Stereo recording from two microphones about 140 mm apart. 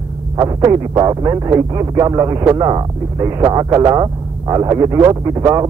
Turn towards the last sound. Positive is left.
turn(degrees=-30)  # may be behind; listen again after turning